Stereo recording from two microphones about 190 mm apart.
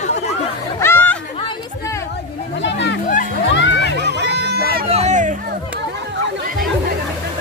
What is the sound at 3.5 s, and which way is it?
Music, 65° left (ahead or behind).